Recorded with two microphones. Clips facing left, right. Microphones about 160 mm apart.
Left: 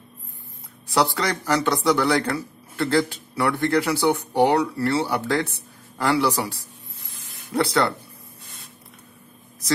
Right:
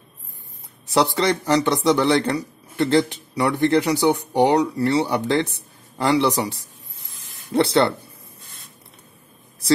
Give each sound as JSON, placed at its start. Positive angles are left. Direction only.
{"t": 0.8, "sound": "speech", "side_deg": -20}